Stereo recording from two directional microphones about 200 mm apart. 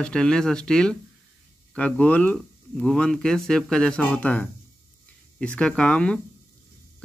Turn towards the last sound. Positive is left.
turn(degrees=5)  # may be behind; listen again after turning